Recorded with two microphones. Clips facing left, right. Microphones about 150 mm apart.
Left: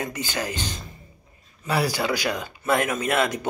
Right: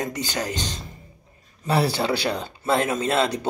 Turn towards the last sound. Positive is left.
turn(degrees=-30)  # may be behind; listen again after turning